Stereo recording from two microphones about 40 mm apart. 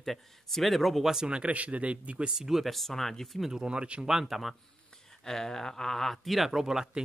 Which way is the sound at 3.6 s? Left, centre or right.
Right.